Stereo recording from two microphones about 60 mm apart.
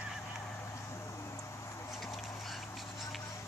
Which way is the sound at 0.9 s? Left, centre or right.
Left.